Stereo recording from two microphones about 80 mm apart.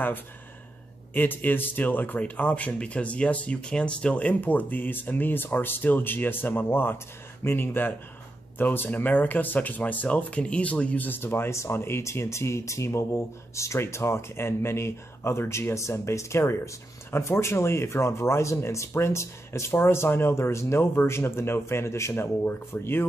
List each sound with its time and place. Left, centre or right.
1.1 s a man's voice: left